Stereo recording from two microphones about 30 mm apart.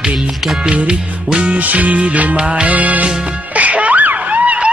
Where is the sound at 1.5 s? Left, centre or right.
Right.